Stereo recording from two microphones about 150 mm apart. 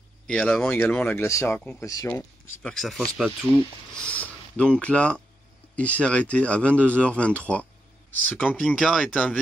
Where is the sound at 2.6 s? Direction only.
5° left (ahead or behind).